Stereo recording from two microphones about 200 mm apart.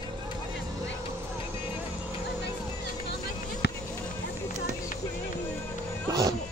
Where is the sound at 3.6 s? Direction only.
55° left (ahead or behind).